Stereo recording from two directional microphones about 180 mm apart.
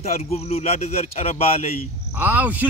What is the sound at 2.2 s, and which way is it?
Speech, 10° right (ahead or behind).